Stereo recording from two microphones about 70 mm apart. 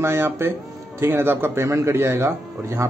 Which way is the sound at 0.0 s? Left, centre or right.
Right.